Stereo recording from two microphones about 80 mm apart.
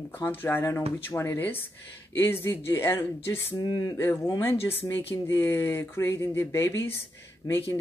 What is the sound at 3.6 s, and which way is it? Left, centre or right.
Speech, left.